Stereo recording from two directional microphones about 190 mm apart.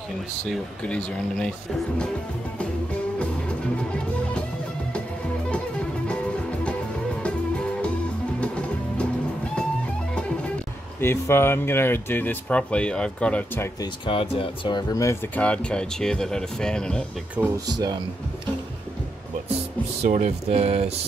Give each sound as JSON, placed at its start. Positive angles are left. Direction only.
{"t": 0.5, "sound": "speech", "side_deg": 5}
{"t": 3.2, "sound": "music", "side_deg": 5}
{"t": 7.2, "sound": "music", "side_deg": 5}
{"t": 11.0, "sound": "speech", "side_deg": 15}
{"t": 14.0, "sound": "speech", "side_deg": 30}
{"t": 17.6, "sound": "speech", "side_deg": -20}
{"t": 20.0, "sound": "speech", "side_deg": -40}